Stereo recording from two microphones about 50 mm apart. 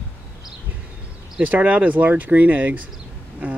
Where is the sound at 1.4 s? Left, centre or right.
Right.